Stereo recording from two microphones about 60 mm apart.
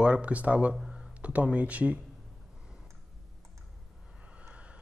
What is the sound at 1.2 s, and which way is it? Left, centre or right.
Speech, right.